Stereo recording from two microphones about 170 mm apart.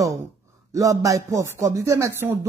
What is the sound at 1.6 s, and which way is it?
Speech, 15° right (ahead or behind).